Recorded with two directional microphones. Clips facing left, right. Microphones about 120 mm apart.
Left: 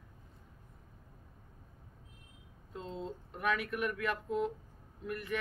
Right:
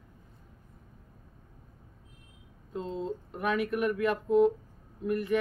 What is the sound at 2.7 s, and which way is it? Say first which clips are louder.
Speech: right 7 dB; 15° right (ahead or behind).